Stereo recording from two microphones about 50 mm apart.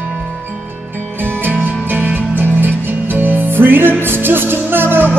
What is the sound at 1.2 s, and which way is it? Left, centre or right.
Music, right.